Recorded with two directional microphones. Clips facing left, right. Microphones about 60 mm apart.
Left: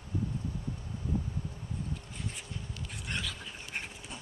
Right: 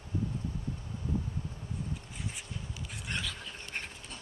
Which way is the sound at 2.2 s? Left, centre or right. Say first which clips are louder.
Even; centre.